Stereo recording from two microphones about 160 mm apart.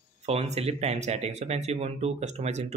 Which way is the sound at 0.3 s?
40° right (ahead or behind).